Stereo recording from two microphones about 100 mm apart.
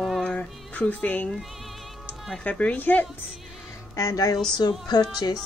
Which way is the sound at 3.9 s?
30° left (ahead or behind).